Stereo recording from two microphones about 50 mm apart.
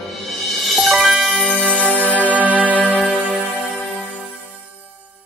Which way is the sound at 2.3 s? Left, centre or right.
Right.